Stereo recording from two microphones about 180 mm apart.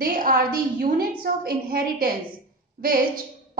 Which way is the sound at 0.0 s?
55° right (ahead or behind).